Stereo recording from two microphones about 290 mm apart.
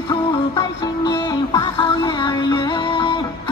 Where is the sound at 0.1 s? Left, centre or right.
Centre.